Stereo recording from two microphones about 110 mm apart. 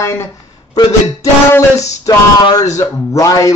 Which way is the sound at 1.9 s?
30° left (ahead or behind).